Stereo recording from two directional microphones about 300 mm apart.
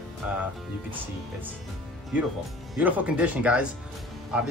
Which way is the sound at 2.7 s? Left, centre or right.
Centre.